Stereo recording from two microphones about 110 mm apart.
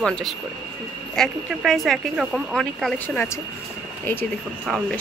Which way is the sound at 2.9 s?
15° left (ahead or behind).